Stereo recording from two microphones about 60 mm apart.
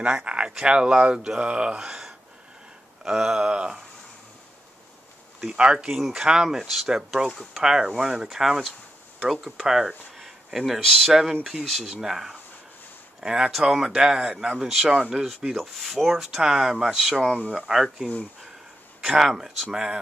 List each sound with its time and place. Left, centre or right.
0.0 s speech: centre
5.4 s speech: centre